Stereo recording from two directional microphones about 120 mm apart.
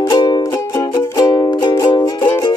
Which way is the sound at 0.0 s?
40° left (ahead or behind).